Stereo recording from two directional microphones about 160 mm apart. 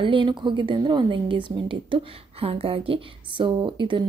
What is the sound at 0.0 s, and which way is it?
A woman's voice, 30° right (ahead or behind).